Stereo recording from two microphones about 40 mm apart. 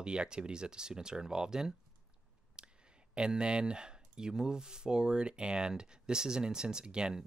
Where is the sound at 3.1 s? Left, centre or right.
Right.